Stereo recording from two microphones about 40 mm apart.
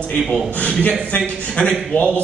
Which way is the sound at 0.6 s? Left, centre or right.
Left.